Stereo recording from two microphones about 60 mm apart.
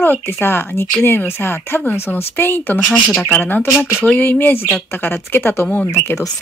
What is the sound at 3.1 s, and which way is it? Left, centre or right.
Speech, centre.